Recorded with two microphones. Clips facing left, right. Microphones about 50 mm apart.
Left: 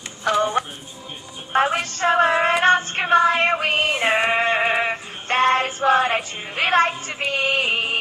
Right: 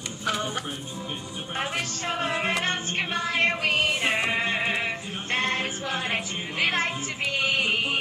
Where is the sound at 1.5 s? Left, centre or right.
Left.